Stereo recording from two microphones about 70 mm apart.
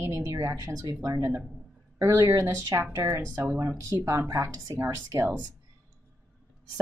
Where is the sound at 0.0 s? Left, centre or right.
Right.